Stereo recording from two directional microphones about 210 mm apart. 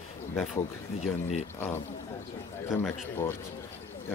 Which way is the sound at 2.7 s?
10° left (ahead or behind).